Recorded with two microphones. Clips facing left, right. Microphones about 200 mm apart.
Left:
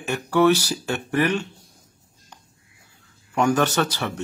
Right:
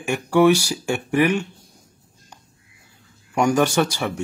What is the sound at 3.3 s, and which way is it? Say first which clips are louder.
Speech: right 2 dB; 10° right (ahead or behind).